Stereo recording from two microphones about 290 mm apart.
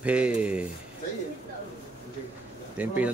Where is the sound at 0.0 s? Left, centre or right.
Centre.